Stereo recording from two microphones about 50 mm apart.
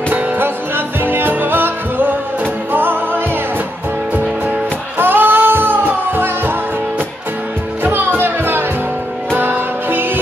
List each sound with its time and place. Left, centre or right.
0.4 s music: right
4.9 s music: right
7.8 s music: right